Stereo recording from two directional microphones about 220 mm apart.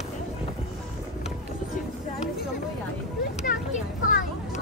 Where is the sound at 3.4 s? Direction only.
35° left (ahead or behind).